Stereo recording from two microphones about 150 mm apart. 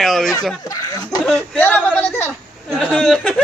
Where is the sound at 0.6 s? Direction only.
25° left (ahead or behind).